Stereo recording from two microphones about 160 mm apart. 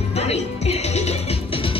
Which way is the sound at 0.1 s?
40° left (ahead or behind).